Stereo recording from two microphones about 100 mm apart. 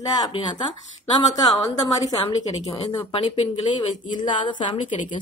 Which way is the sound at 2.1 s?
80° left.